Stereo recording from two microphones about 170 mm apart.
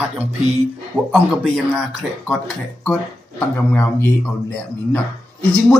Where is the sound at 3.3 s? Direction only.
10° left (ahead or behind).